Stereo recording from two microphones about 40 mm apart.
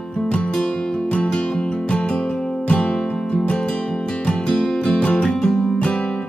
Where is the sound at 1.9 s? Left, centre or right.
Left.